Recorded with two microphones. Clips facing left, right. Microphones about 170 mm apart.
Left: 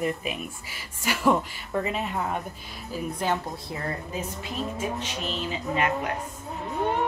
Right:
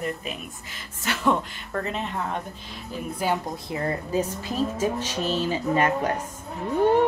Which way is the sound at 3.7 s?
20° right (ahead or behind).